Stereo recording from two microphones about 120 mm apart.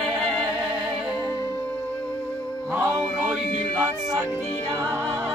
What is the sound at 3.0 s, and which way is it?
Music, centre (ahead or behind).